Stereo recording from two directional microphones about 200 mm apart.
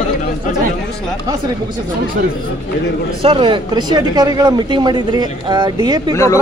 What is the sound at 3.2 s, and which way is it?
Speech, 25° right (ahead or behind).